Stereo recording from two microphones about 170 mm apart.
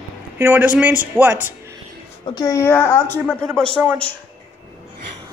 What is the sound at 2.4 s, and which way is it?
Speech, 20° left (ahead or behind).